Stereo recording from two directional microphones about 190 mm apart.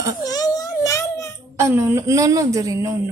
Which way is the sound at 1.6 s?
15° right (ahead or behind).